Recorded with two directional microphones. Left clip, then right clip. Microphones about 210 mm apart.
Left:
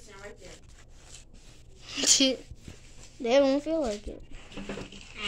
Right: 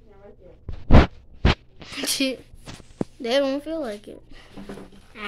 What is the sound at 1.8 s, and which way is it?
A woman's voice, 5° right (ahead or behind).